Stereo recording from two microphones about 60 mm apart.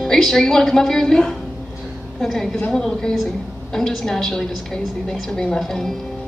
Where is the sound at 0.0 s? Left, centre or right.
Centre.